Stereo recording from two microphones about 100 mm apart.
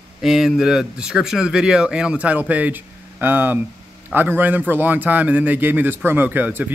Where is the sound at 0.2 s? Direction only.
5° right (ahead or behind).